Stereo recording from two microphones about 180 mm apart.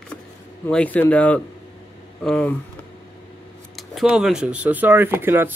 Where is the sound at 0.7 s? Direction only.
10° left (ahead or behind).